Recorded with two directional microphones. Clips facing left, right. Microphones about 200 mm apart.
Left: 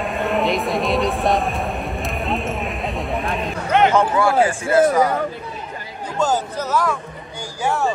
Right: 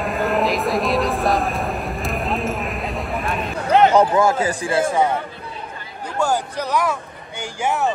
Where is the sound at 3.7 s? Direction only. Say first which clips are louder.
Right 2 dB; 35° right (ahead or behind).